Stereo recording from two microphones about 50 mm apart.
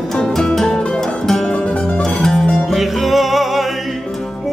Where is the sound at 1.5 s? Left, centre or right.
Centre.